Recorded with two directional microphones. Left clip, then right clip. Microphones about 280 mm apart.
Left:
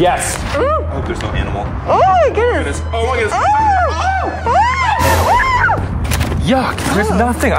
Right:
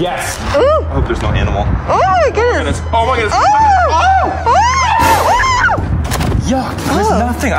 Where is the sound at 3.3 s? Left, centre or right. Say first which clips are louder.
Right 3 dB; centre.